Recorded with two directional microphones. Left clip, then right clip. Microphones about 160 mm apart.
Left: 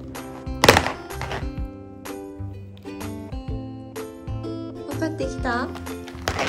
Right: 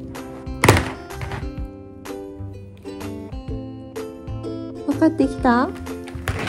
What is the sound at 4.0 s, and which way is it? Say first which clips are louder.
Music: right 3 dB; centre (ahead or behind).